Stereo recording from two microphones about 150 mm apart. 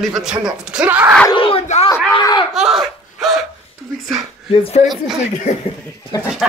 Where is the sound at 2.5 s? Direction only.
Centre (ahead or behind).